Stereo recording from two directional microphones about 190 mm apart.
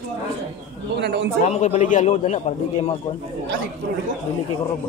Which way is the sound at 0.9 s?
65° right (ahead or behind).